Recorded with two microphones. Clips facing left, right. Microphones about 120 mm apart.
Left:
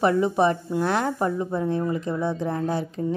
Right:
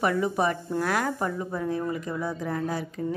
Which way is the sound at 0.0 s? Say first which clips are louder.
Left 5 dB; 25° left (ahead or behind).